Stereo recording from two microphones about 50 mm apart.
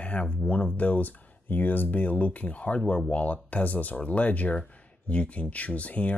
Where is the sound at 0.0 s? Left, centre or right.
Left.